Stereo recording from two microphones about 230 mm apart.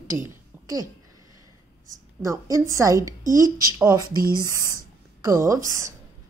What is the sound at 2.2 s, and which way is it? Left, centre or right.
A woman's voice, centre.